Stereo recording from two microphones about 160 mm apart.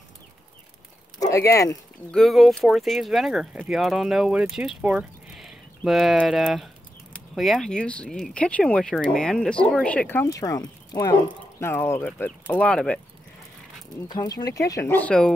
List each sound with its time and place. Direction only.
1.2 s speech: 20° left (ahead or behind)
2.0 s speech: centre (ahead or behind); by 11.1 s 25° left (ahead or behind)
11.2 s speech: 15° left (ahead or behind)
14.0 s speech: 25° left (ahead or behind); by 15.3 s 5° left (ahead or behind)